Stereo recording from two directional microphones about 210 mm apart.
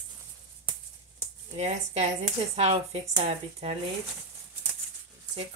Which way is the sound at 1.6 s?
30° right (ahead or behind).